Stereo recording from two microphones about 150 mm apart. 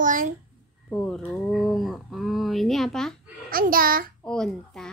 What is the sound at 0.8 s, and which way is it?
Speech, 10° left (ahead or behind).